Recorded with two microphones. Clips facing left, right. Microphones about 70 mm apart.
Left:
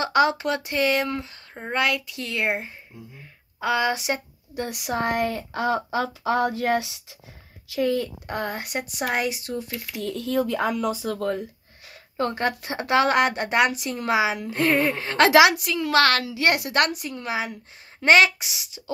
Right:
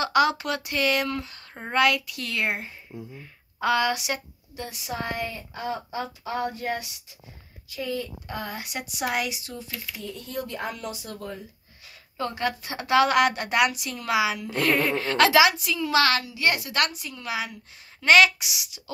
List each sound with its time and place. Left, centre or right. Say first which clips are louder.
0.0 s speech: left 2 dB; left
4.6 s speech: left 6 dB; left
7.7 s speech: left 7 dB; left
9.9 s speech: left 10 dB; left
12.2 s a woman's voice: left 3 dB; left
15.3 s a woman's voice: left 3 dB; left
16.7 s a woman's voice: left 4 dB; left